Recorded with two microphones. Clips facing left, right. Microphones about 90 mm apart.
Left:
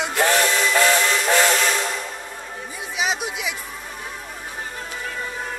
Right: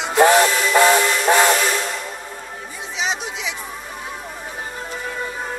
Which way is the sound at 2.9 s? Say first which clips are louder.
Even; 5° left (ahead or behind).